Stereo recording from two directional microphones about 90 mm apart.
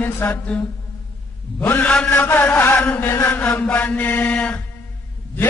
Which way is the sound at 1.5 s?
20° left (ahead or behind).